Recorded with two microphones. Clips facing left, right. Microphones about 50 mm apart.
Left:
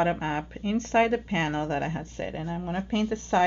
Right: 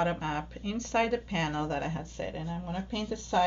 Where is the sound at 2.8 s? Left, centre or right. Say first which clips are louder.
Left 7 dB; left.